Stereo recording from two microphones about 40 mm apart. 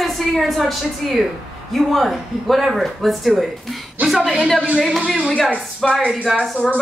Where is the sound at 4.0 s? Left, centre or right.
Right.